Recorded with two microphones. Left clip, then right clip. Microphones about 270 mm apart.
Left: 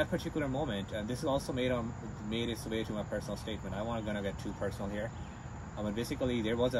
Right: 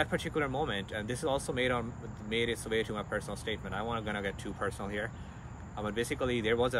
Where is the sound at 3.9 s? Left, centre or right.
Right.